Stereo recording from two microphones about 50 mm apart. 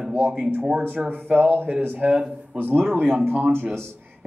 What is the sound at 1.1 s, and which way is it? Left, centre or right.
Speech, right.